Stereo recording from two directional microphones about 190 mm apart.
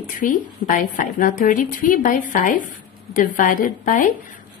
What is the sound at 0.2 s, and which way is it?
A woman's voice, 45° left (ahead or behind).